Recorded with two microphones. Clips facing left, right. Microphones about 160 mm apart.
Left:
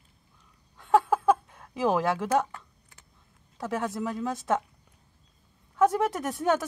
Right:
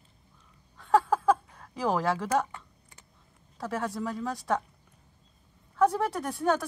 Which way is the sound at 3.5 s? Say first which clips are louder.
Left 2 dB; centre (ahead or behind).